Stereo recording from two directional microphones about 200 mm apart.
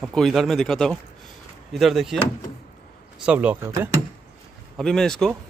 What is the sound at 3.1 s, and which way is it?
Speech, 5° right (ahead or behind).